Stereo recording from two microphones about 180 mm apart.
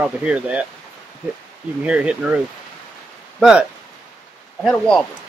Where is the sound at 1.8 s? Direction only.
5° right (ahead or behind).